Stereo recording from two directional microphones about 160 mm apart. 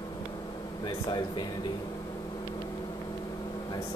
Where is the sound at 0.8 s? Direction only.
25° left (ahead or behind).